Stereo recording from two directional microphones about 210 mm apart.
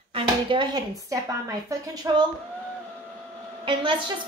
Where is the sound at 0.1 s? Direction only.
25° right (ahead or behind).